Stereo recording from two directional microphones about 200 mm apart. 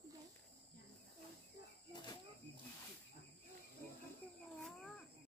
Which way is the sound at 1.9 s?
20° left (ahead or behind).